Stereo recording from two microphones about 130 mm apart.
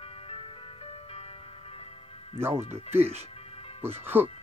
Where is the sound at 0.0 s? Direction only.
50° left (ahead or behind).